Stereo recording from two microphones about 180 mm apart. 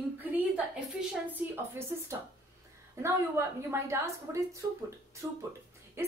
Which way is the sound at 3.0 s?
15° right (ahead or behind).